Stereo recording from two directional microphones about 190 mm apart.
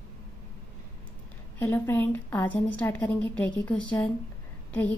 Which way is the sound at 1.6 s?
10° left (ahead or behind).